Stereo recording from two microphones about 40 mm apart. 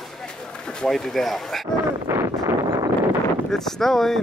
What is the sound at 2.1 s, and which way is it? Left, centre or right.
Wind noise, right.